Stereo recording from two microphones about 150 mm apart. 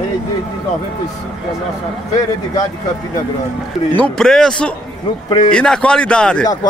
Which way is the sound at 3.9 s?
5° left (ahead or behind).